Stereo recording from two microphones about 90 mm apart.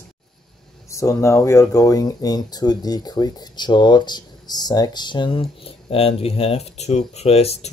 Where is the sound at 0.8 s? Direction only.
35° left (ahead or behind); by 6.6 s 90° left.